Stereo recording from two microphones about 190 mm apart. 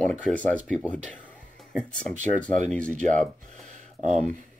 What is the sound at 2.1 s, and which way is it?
Speech, 40° right (ahead or behind).